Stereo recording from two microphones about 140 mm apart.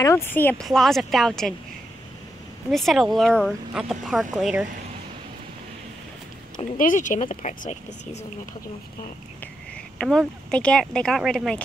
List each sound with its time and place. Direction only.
0.0 s speech: 15° left (ahead or behind)
0.7 s speech: centre (ahead or behind)
2.7 s speech: centre (ahead or behind)
6.8 s a woman's voice: 65° left (ahead or behind)
10.0 s speech: 5° left (ahead or behind)